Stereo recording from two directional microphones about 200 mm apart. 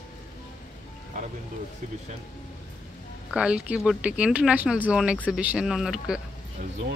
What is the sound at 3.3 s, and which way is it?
Speech, 5° right (ahead or behind).